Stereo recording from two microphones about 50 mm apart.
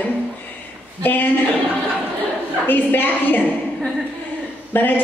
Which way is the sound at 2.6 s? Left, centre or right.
Left.